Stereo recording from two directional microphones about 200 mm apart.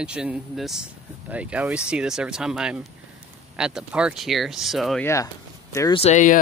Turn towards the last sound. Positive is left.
turn(degrees=35)  # may be behind; listen again after turning